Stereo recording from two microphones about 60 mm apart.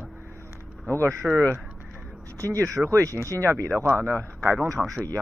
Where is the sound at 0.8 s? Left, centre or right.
Left.